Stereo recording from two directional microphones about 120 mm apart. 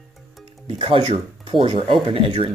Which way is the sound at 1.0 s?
60° right (ahead or behind).